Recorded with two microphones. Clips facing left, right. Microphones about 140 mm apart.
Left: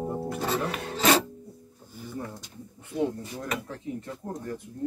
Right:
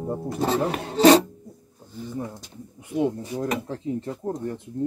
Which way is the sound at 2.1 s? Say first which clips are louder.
Right 3 dB; 20° right (ahead or behind).